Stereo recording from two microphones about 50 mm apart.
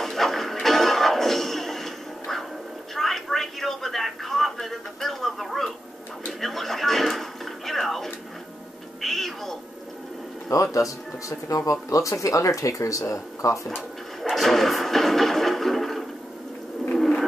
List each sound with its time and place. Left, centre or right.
0.0 s music: centre
2.9 s a sound: centre
6.4 s television: centre
9.0 s cat: centre
10.5 s speech: left
14.2 s a sound: centre